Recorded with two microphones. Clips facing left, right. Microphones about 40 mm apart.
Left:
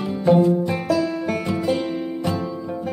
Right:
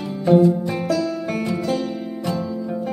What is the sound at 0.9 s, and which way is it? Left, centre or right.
Music, centre.